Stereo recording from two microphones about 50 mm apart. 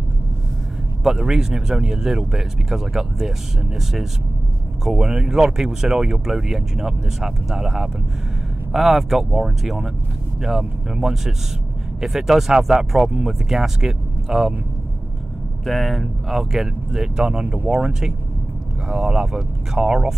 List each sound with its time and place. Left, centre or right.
1.2 s speech: centre
15.6 s speech: centre
17.6 s speech: right
18.9 s speech: centre